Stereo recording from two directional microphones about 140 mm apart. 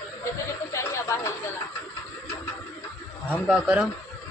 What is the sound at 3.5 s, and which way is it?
Speech, 10° right (ahead or behind).